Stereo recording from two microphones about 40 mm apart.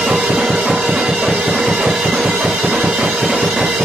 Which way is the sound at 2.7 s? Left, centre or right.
Right.